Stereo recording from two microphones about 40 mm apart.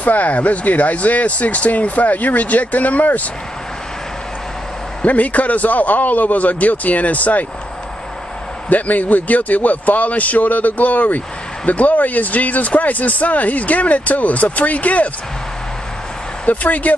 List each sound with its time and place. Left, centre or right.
0.0 s a man's voice: left
5.0 s a man's voice: left
8.6 s a man's voice: left
16.4 s a man's voice: left